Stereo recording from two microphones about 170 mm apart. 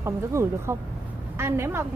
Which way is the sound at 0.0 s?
15° right (ahead or behind).